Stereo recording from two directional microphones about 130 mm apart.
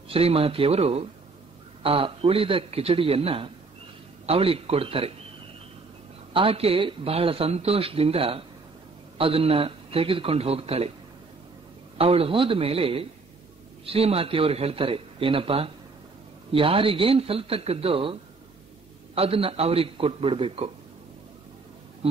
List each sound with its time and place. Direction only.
0.1 s speech: 50° right (ahead or behind)
6.3 s speech: 45° right (ahead or behind)
12.0 s speech: 45° right (ahead or behind)
19.1 s speech: 45° right (ahead or behind)